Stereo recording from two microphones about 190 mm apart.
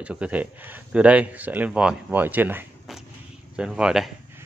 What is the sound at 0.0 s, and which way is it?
Speech, 5° right (ahead or behind).